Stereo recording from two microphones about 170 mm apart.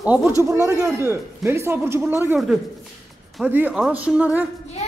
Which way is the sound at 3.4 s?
10° right (ahead or behind).